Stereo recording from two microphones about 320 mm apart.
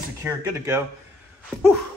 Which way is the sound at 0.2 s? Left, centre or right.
Centre.